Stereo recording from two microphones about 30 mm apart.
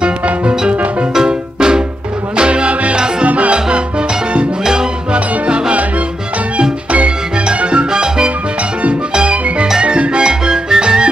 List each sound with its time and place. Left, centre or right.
1.2 s music: right
3.3 s salsa music: right
3.5 s salsa music: right
5.7 s salsa music: right
6.9 s music: right
7.9 s salsa music: right
9.1 s music: right
9.8 s salsa music: right
10.2 s music: right